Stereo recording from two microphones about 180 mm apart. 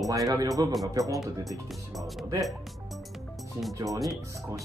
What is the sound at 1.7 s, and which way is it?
Speech, centre (ahead or behind).